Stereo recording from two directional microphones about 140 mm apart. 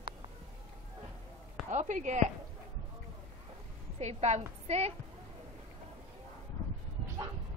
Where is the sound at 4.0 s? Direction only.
55° right (ahead or behind).